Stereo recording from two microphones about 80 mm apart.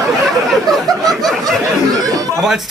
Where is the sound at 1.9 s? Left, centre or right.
Right.